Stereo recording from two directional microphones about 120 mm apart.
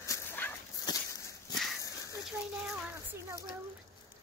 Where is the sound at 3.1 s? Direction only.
25° right (ahead or behind).